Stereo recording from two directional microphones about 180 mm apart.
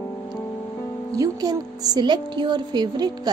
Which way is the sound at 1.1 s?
20° right (ahead or behind).